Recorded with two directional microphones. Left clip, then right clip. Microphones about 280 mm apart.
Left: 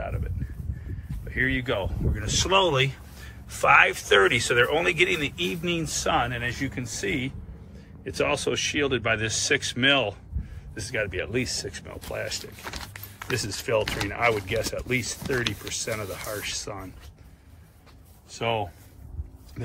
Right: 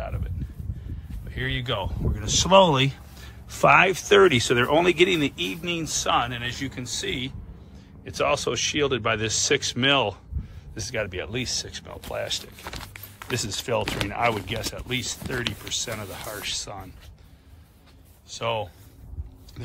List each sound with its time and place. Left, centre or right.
0.0 s a sound: centre
1.3 s speech: centre
11.5 s speech: right
11.8 s speech: centre
18.4 s speech: centre